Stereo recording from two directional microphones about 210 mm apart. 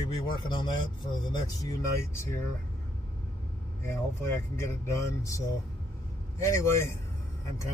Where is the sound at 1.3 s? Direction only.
15° left (ahead or behind).